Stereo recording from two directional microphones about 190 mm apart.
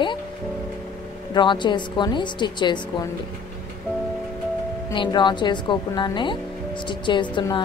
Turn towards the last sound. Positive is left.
turn(degrees=25)  # may be behind; listen again after turning